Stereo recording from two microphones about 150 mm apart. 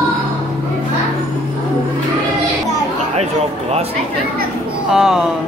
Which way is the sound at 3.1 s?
45° right (ahead or behind).